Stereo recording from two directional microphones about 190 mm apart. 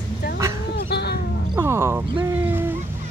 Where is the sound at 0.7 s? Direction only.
60° left (ahead or behind).